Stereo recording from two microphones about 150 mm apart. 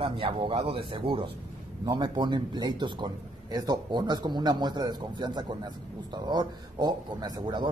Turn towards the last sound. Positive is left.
turn(degrees=-30)  # may be behind; listen again after turning